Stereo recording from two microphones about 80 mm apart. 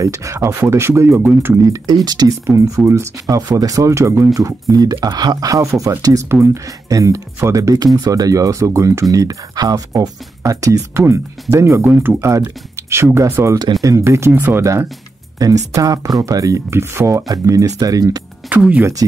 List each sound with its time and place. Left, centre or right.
0.0 s speech: right
1.2 s speech: right
2.0 s speech: right
2.4 s speech: right
14.3 s speech: right
14.6 s speech: right
16.7 s speech: right
18.5 s speech: centre